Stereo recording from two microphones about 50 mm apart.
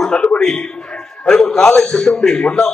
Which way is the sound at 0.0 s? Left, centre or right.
Centre.